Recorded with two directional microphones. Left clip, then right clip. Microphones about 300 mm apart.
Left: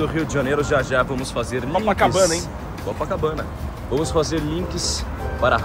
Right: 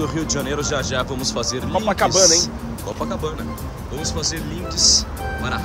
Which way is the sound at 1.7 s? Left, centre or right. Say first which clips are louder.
Left 1 dB; right.